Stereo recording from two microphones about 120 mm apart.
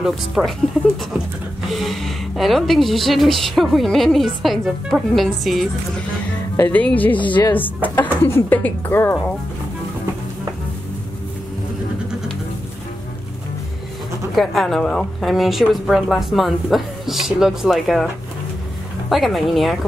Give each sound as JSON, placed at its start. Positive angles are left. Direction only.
{"t": 0.0, "sound": "speech", "side_deg": -5}
{"t": 1.7, "sound": "speech", "side_deg": 0}
{"t": 6.7, "sound": "speech", "side_deg": 15}
{"t": 7.2, "sound": "speech", "side_deg": 40}
{"t": 7.5, "sound": "speech", "side_deg": 15}
{"t": 14.3, "sound": "speech", "side_deg": 0}
{"t": 19.0, "sound": "speech", "side_deg": 0}